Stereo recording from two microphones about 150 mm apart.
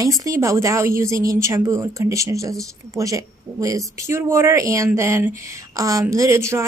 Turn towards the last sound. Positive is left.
turn(degrees=-15)  # may be behind; listen again after turning